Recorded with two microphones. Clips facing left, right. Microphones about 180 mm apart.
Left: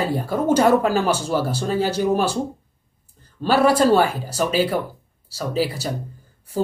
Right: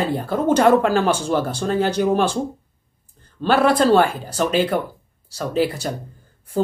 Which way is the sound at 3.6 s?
10° left (ahead or behind).